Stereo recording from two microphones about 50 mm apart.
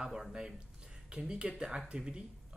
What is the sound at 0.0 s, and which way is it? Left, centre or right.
Speech, centre.